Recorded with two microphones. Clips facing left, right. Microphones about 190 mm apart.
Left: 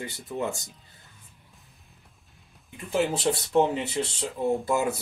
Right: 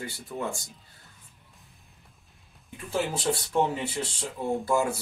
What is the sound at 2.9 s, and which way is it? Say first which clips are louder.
Speech: left 3 dB; 20° left (ahead or behind).